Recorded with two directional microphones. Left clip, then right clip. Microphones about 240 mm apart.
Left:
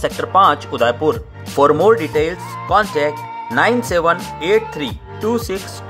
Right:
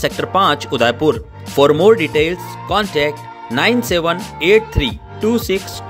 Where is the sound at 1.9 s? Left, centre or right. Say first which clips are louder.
Right 2 dB; centre.